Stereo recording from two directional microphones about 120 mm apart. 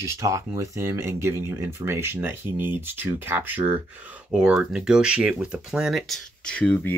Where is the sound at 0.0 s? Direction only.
25° right (ahead or behind).